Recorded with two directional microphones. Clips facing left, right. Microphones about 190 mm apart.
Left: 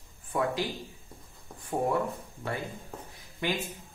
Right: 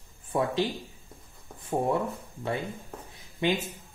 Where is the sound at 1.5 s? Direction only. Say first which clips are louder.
Even; centre (ahead or behind).